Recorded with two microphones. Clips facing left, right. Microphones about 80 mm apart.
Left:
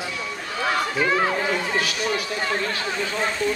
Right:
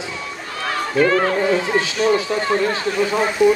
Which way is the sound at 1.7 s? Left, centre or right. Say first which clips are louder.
Right 7 dB; right.